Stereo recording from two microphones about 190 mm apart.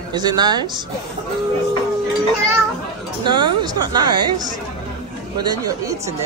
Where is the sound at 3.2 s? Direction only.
25° right (ahead or behind).